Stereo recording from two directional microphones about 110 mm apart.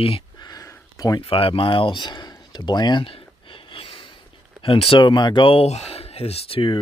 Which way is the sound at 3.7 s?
55° left (ahead or behind).